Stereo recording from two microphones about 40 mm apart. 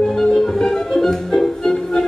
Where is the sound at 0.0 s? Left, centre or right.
Centre.